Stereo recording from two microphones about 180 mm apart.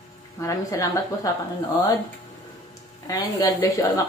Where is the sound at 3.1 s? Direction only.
20° left (ahead or behind).